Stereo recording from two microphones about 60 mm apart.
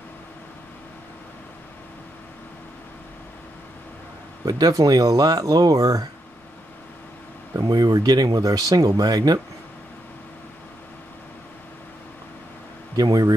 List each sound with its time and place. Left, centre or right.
4.5 s speech: right
7.5 s speech: right
12.9 s speech: right